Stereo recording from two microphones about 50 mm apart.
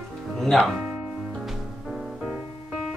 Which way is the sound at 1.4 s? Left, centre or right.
Centre.